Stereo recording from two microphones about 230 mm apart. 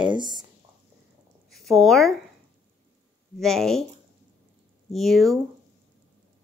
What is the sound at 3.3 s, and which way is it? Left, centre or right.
Speech, centre.